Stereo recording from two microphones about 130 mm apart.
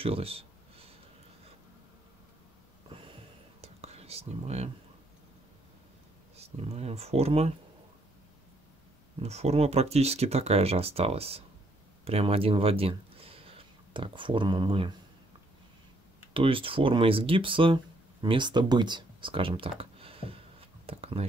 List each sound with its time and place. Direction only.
0.0 s a sound: 45° right (ahead or behind)
2.9 s whispering: 40° right (ahead or behind)
6.3 s speech: 50° right (ahead or behind)
9.2 s speech: 55° right (ahead or behind)
16.3 s speech: 45° right (ahead or behind)